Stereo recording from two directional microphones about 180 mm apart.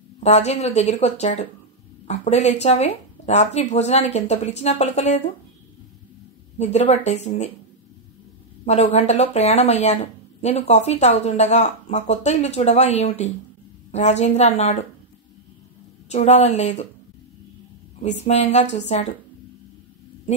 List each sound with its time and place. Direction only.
0.2 s speech: 35° left (ahead or behind)
6.6 s speech: 35° left (ahead or behind)
8.6 s speech: 40° left (ahead or behind)
16.1 s speech: 40° left (ahead or behind)
18.0 s speech: 40° left (ahead or behind)